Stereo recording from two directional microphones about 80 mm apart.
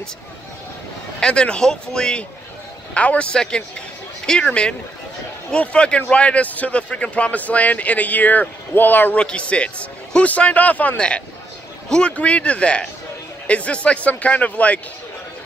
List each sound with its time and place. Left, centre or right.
1.2 s a man's voice: centre